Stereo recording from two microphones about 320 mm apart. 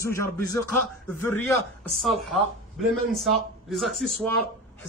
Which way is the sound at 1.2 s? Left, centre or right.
Centre.